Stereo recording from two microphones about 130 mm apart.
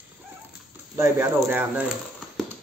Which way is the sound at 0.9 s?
20° right (ahead or behind).